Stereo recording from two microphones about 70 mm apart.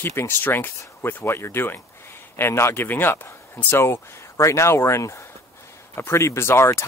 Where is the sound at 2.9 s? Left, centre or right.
Left.